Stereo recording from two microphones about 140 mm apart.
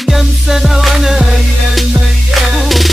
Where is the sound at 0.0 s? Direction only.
Centre (ahead or behind).